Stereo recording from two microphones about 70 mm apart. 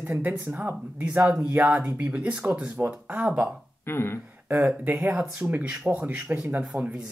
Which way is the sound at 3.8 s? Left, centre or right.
Left.